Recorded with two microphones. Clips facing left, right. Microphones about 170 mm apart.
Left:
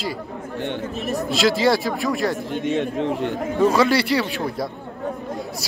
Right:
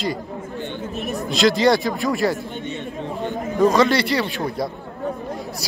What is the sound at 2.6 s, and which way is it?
Speech, 90° left.